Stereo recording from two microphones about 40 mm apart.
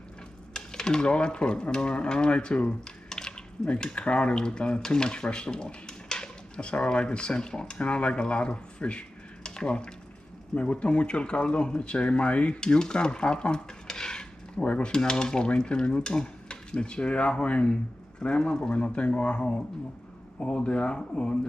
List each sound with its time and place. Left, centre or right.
0.5 s speech: centre
3.1 s a sound: centre
3.9 s speech: left
12.5 s speech: centre
14.6 s cutlery: left
14.9 s speech: centre